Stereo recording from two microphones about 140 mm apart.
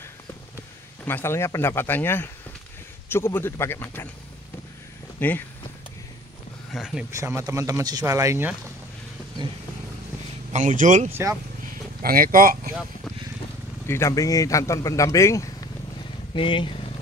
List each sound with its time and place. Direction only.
1.0 s speech: 15° left (ahead or behind)
5.2 s speech: 10° left (ahead or behind)
6.7 s speech: 5° right (ahead or behind)
7.1 s speech: 20° right (ahead or behind)
10.5 s speech: 65° right (ahead or behind)
11.1 s speech: 20° right (ahead or behind)
12.0 s speech: 90° right
13.8 s speech: 20° left (ahead or behind)
16.3 s speech: 35° left (ahead or behind)